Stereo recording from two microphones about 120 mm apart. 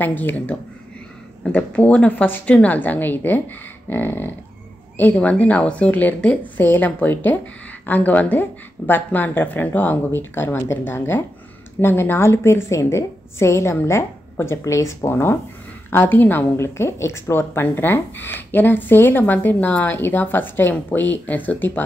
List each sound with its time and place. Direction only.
0.0 s a woman's voice: 15° left (ahead or behind)